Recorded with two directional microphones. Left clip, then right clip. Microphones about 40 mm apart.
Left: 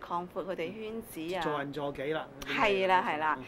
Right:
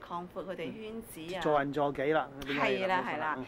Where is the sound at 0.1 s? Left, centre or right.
Centre.